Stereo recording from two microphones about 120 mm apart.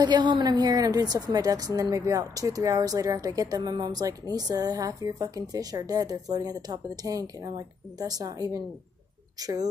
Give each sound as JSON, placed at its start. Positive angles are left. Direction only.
{"t": 0.0, "sound": "a woman's voice", "side_deg": -35}